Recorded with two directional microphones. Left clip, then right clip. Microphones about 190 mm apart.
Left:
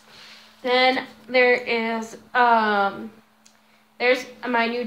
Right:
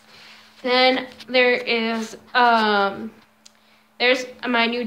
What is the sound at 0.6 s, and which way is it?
Speech, 20° right (ahead or behind).